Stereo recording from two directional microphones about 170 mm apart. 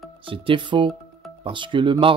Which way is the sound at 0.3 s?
30° right (ahead or behind).